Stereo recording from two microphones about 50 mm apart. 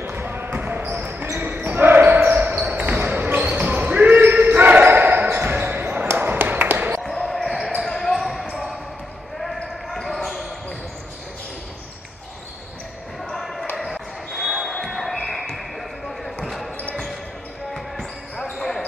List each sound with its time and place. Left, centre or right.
0.1 s basketball bounce: right
7.0 s basketball bounce: centre
9.8 s basketball bounce: centre
13.3 s basketball bounce: centre